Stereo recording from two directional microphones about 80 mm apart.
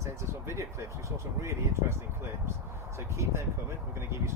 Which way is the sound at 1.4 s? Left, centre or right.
Right.